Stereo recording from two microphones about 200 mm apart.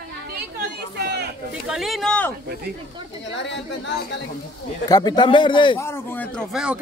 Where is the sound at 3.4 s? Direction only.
60° left (ahead or behind).